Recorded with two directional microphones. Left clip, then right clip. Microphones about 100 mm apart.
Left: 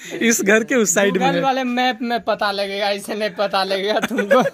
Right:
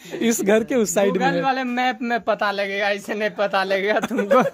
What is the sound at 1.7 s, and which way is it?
Speech, 70° left (ahead or behind).